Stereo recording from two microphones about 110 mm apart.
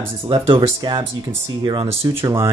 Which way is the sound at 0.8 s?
45° right (ahead or behind).